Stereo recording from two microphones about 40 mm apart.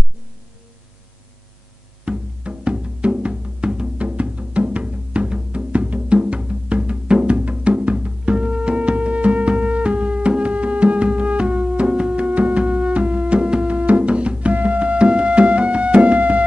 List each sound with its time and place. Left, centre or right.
2.0 s music: right
6.1 s music: right
6.4 s music: right